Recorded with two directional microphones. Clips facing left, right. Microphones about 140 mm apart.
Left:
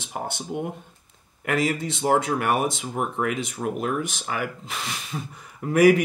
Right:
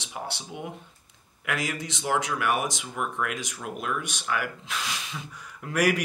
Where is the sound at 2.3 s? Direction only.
55° left (ahead or behind).